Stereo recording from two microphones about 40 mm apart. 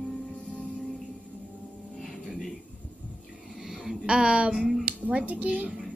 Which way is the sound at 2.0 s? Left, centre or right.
Centre.